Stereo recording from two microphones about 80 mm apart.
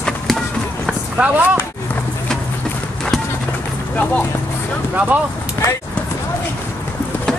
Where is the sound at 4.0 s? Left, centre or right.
Centre.